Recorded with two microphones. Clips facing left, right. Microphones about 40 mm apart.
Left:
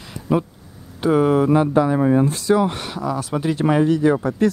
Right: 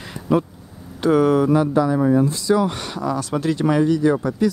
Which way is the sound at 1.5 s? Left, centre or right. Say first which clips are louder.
Left 1 dB; left.